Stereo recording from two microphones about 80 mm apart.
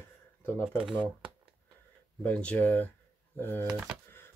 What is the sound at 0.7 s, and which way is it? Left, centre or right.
Speech, centre.